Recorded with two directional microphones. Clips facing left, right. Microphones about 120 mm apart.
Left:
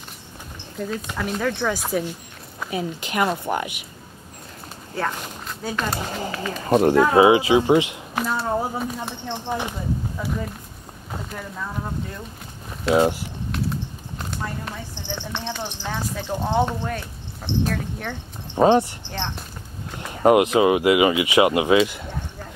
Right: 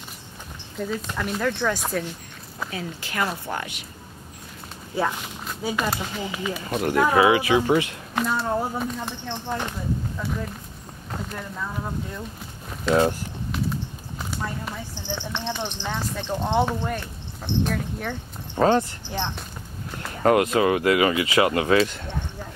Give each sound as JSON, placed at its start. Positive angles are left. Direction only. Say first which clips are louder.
{"t": 0.7, "sound": "speech", "louder": "even", "side_deg": 0}
{"t": 2.7, "sound": "a woman's voice", "louder": "left 8 dB", "side_deg": 20}
{"t": 4.9, "sound": "speech", "louder": "right 1 dB", "side_deg": -5}
{"t": 6.6, "sound": "speech", "louder": "left 12 dB", "side_deg": 40}
{"t": 7.2, "sound": "a woman's voice", "louder": "left 3 dB", "side_deg": 25}
{"t": 8.1, "sound": "speech", "louder": "right 1 dB", "side_deg": 5}
{"t": 12.8, "sound": "speech", "louder": "left 2 dB", "side_deg": 10}
{"t": 13.5, "sound": "a sound", "louder": "left 1 dB", "side_deg": 0}
{"t": 15.1, "sound": "speech", "louder": "even", "side_deg": 10}
{"t": 18.5, "sound": "a woman's voice", "louder": "left 3 dB", "side_deg": 20}
{"t": 19.0, "sound": "speech", "louder": "right 1 dB", "side_deg": -10}
{"t": 20.0, "sound": "speech", "louder": "left 3 dB", "side_deg": 20}